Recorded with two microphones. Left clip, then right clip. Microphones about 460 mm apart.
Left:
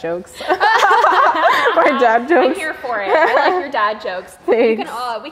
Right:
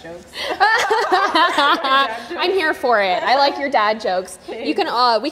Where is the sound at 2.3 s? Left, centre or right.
Left.